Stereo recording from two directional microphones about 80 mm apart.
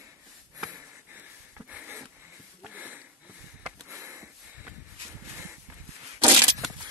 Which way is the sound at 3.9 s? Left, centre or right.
Right.